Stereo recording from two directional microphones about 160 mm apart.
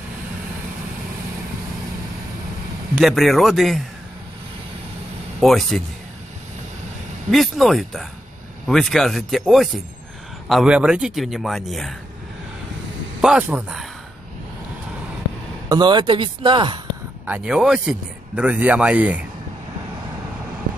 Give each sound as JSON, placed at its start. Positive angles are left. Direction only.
{"t": 3.0, "sound": "a man's voice", "side_deg": 0}
{"t": 5.4, "sound": "a man's voice", "side_deg": 0}
{"t": 7.2, "sound": "a man's voice", "side_deg": 0}
{"t": 13.2, "sound": "a man's voice", "side_deg": -10}
{"t": 15.7, "sound": "speech", "side_deg": -30}
{"t": 17.3, "sound": "speech", "side_deg": -5}